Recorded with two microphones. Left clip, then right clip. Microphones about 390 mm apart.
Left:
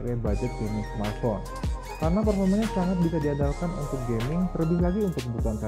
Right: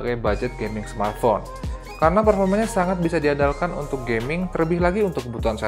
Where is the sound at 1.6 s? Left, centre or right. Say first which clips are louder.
Right 12 dB; centre.